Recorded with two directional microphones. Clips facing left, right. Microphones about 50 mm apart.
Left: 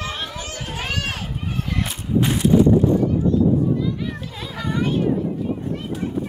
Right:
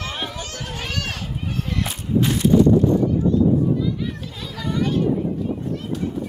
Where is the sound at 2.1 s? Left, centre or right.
Centre.